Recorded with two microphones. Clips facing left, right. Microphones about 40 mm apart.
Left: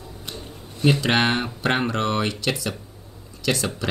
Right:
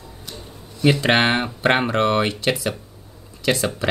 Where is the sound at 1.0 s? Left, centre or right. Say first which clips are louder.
Right 3 dB; right.